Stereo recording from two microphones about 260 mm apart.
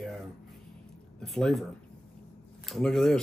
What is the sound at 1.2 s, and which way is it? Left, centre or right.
Speech, centre.